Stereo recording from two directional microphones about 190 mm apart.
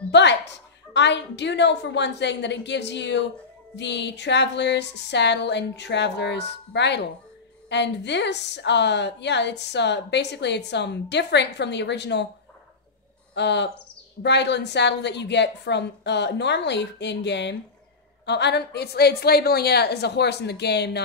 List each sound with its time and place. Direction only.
0.1 s a woman's voice: 65° left (ahead or behind)
13.3 s a woman's voice: 65° left (ahead or behind)